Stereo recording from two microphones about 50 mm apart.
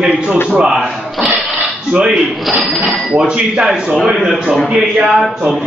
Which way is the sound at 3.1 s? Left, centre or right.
Right.